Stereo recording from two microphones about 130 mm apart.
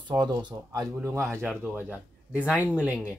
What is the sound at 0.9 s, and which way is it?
Speech, 20° right (ahead or behind).